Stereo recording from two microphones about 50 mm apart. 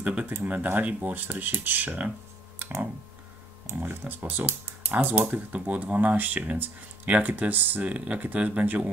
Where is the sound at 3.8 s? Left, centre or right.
Right.